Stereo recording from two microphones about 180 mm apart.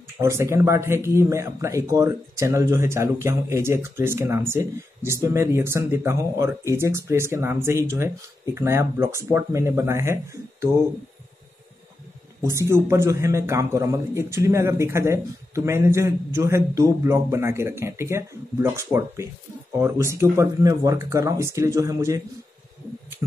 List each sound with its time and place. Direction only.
0.2 s speech: 15° right (ahead or behind)
12.4 s speech: 15° right (ahead or behind)